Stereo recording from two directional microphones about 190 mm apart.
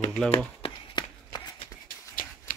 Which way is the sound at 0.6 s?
25° left (ahead or behind).